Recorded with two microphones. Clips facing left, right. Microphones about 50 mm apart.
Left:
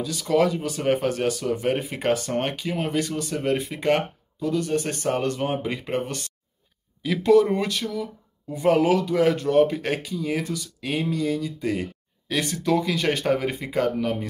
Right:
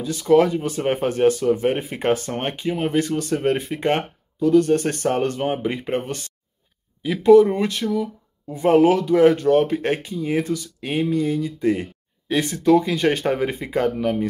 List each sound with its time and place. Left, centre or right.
0.0 s speech: right